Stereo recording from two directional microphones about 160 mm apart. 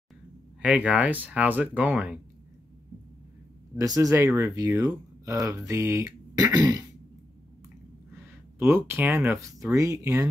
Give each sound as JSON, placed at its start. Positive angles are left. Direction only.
{"t": 0.6, "sound": "speech", "side_deg": -10}
{"t": 3.7, "sound": "speech", "side_deg": -20}
{"t": 8.1, "sound": "speech", "side_deg": -15}